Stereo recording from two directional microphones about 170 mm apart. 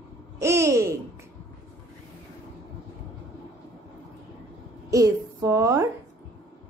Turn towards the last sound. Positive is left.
turn(degrees=-20)  # may be behind; listen again after turning